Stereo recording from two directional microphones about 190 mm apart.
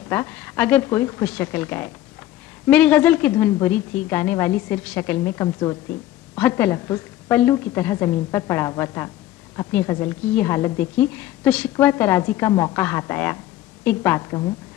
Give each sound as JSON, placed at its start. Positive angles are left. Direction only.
{"t": 0.1, "sound": "a woman's voice", "side_deg": 10}